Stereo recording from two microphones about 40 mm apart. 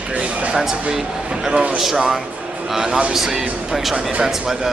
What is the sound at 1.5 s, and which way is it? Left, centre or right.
Speech, centre.